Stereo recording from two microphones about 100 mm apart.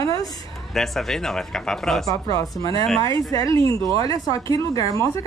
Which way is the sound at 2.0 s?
35° left (ahead or behind).